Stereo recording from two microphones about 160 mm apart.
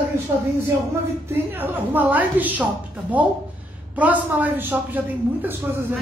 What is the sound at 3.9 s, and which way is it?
A woman's voice, 10° right (ahead or behind).